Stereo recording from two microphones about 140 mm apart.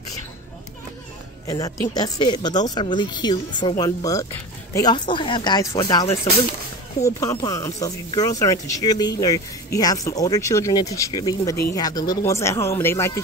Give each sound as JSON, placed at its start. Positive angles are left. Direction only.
{"t": 1.5, "sound": "speech", "side_deg": 25}